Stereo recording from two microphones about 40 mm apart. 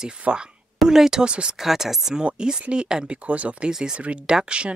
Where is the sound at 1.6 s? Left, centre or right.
Centre.